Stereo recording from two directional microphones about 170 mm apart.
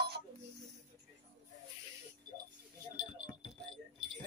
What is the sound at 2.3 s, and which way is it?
Creak, 25° right (ahead or behind).